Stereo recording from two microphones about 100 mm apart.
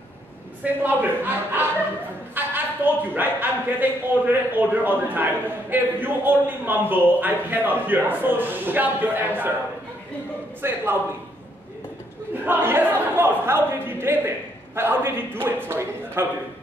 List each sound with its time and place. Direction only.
0.8 s a man's voice: 20° right (ahead or behind)
10.6 s a man's voice: 20° right (ahead or behind)
12.4 s a man's voice: 20° right (ahead or behind)